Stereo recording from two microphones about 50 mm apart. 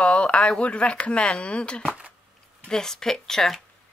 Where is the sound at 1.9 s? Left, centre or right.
Right.